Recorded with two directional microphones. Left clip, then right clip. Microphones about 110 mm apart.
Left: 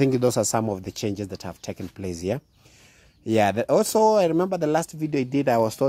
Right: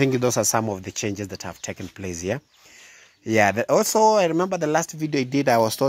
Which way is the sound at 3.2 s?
40° left (ahead or behind).